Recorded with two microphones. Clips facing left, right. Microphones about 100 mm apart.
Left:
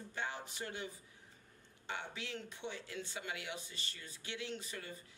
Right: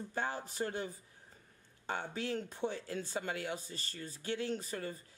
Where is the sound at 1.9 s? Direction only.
40° right (ahead or behind).